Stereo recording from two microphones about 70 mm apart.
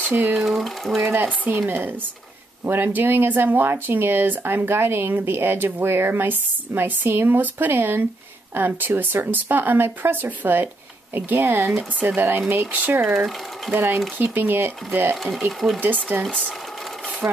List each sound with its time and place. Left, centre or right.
0.1 s speech: right
0.4 s speech: centre
1.0 s speech: right
15.2 s speech: centre
15.8 s speech: right
16.3 s speech: centre
17.2 s speech: right